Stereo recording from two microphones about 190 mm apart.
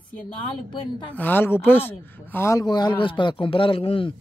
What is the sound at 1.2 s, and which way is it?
A man's voice, 10° left (ahead or behind).